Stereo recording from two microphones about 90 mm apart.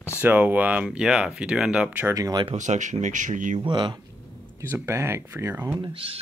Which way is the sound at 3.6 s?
60° right (ahead or behind).